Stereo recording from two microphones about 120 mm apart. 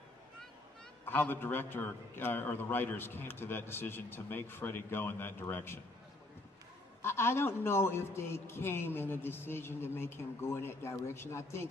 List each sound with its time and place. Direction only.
1.0 s a man's voice: 15° left (ahead or behind)
7.0 s a man's voice: 20° left (ahead or behind)